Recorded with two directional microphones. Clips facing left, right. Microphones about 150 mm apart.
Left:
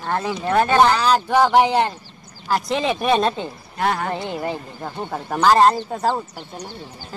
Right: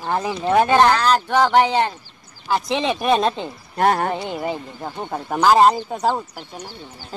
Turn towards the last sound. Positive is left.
turn(degrees=-5)  # may be behind; listen again after turning